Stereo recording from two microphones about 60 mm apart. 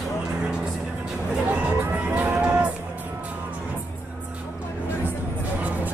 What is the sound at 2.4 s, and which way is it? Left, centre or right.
Music, centre.